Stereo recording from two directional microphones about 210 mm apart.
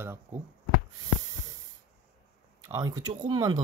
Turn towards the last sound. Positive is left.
turn(degrees=-20)  # may be behind; listen again after turning